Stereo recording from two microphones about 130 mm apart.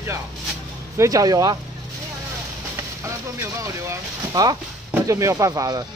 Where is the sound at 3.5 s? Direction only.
25° right (ahead or behind).